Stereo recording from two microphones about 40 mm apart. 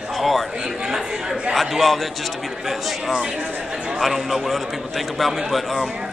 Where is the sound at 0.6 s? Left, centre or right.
Centre.